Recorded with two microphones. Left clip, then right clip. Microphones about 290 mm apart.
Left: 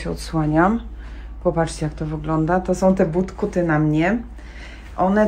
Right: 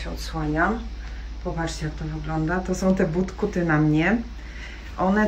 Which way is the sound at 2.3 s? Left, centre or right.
Centre.